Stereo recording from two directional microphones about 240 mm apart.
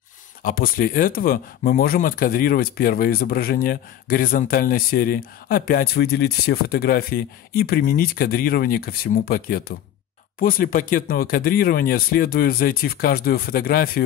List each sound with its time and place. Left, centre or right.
0.4 s speech: left